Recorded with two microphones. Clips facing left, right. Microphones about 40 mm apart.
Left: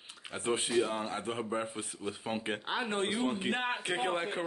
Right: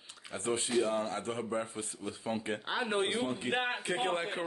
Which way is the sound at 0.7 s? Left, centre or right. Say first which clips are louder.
Even; centre.